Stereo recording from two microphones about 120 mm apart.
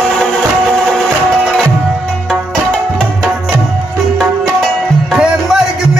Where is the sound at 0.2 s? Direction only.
5° left (ahead or behind).